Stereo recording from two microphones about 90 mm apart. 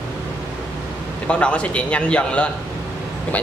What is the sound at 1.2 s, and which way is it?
A woman's voice, 10° left (ahead or behind).